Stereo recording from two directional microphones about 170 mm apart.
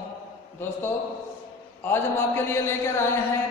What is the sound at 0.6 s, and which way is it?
Speech, 15° left (ahead or behind).